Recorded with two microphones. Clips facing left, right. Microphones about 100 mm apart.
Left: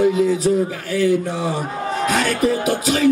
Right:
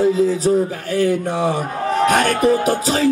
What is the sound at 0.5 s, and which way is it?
Speech, 35° right (ahead or behind).